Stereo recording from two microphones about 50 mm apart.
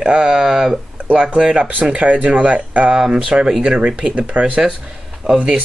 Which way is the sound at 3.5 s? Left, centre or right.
Centre.